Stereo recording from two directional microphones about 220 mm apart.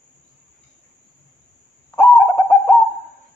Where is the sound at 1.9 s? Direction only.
10° left (ahead or behind).